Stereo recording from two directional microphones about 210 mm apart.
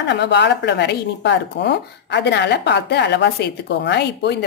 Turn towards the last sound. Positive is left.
turn(degrees=55)  # may be behind; listen again after turning